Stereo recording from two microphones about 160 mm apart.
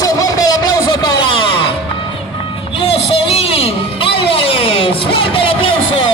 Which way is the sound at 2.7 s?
35° left (ahead or behind).